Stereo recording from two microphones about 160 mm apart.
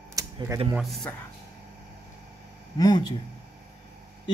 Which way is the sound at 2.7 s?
25° left (ahead or behind).